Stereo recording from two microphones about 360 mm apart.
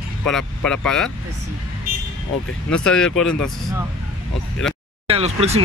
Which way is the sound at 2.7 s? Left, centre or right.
Centre.